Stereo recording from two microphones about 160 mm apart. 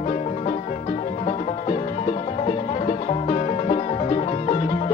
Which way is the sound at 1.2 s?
45° left (ahead or behind).